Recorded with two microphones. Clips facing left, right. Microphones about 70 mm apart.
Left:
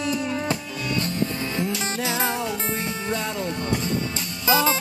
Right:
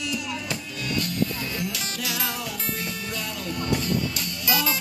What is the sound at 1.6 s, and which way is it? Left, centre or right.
Music, left.